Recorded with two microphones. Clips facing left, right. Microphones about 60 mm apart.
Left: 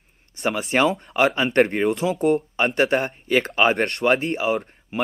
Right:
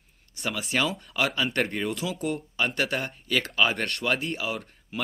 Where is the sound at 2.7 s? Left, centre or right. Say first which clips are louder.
Left 8 dB; left.